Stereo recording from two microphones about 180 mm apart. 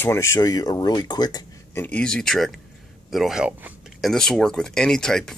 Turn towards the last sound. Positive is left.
turn(degrees=5)  # may be behind; listen again after turning